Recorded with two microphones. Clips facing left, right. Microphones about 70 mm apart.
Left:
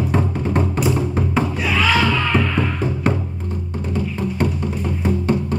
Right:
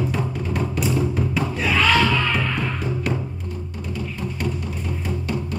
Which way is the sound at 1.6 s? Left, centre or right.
Centre.